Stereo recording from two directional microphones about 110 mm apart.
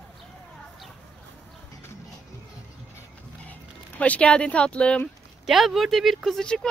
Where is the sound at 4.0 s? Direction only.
10° left (ahead or behind).